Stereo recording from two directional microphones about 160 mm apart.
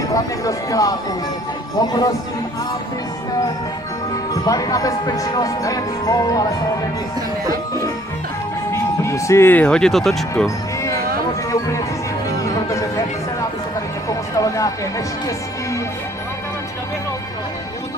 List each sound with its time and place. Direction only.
0.0 s speech: 20° left (ahead or behind)
4.3 s speech: 20° left (ahead or behind)
8.7 s speech: 20° left (ahead or behind); by 10.2 s centre (ahead or behind)
11.5 s music: 20° left (ahead or behind)
14.0 s a sound: 20° left (ahead or behind)